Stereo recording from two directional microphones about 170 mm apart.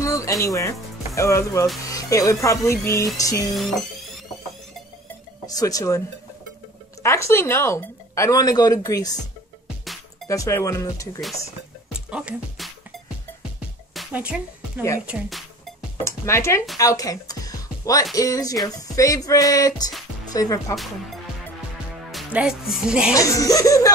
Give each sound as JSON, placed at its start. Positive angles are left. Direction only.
{"t": 0.0, "sound": "speech", "side_deg": 20}
{"t": 5.5, "sound": "speech", "side_deg": 20}
{"t": 10.2, "sound": "speech", "side_deg": 20}
{"t": 11.9, "sound": "music", "side_deg": -5}
{"t": 13.9, "sound": "music", "side_deg": -5}
{"t": 15.0, "sound": "speech", "side_deg": -5}
{"t": 16.0, "sound": "speech", "side_deg": 15}
{"t": 20.7, "sound": "speech", "side_deg": 0}
{"t": 23.1, "sound": "speech", "side_deg": 20}